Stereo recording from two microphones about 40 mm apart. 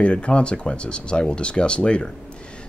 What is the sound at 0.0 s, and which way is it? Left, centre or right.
Speech, left.